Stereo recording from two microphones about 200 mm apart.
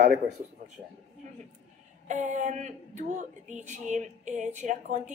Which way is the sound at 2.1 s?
35° right (ahead or behind).